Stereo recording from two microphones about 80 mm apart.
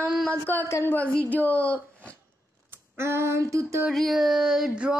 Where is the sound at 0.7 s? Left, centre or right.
Left.